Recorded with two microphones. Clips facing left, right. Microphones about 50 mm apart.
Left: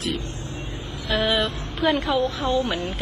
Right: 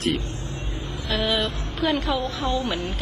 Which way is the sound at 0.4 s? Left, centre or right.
Left.